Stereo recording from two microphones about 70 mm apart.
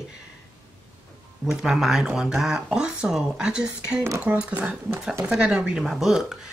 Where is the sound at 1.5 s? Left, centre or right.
Centre.